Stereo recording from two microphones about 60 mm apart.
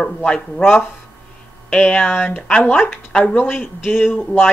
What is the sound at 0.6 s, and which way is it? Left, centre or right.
Speech, left.